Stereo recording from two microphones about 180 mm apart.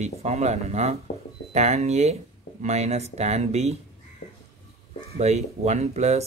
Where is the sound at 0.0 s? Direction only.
40° right (ahead or behind).